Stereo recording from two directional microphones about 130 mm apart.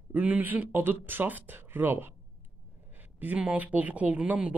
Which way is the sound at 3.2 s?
10° right (ahead or behind).